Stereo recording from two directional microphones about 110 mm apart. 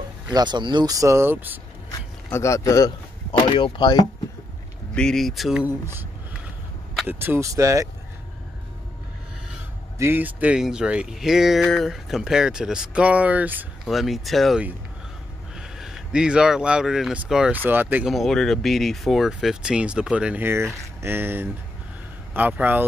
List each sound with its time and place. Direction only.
0.3 s speech: 40° right (ahead or behind)
0.9 s speech: 25° right (ahead or behind)
2.3 s speech: 25° left (ahead or behind)
3.3 s speech: 50° left (ahead or behind)
4.9 s speech: 5° left (ahead or behind)
7.1 s speech: 20° right (ahead or behind)
9.9 s speech: 20° right (ahead or behind)
13.8 s speech: centre (ahead or behind); by 18.0 s 15° right (ahead or behind)
18.0 s speech: centre (ahead or behind)
20.4 s speech: 25° right (ahead or behind)